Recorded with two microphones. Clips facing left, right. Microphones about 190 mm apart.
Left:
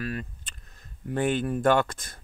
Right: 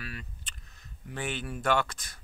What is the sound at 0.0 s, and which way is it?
Speech, 45° left (ahead or behind).